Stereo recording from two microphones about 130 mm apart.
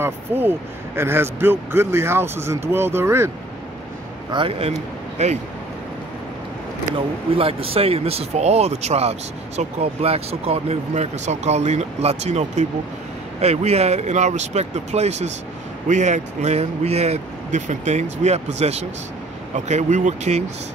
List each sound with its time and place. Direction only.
0.0 s speech: 15° right (ahead or behind)
4.3 s speech: 45° right (ahead or behind)
5.2 s speech: 60° right (ahead or behind)
7.3 s speech: 45° right (ahead or behind); by 20.4 s 65° right (ahead or behind)